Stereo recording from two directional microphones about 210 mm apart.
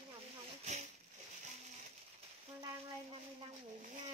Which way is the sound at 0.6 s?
30° right (ahead or behind).